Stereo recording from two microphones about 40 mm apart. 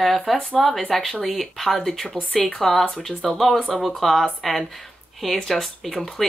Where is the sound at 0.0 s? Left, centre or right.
Centre.